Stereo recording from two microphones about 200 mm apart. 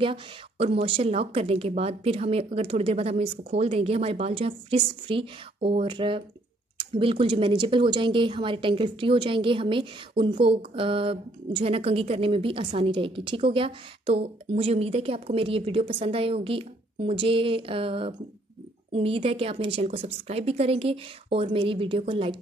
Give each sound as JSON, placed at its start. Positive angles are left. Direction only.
{"t": 0.0, "sound": "a woman's voice", "side_deg": -30}